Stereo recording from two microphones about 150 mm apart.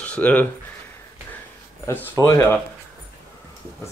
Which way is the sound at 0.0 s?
10° left (ahead or behind).